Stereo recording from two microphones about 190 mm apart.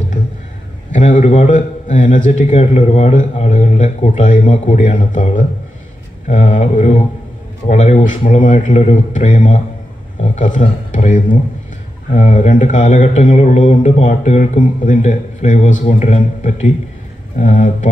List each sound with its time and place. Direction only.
0.9 s a man's voice: 40° left (ahead or behind)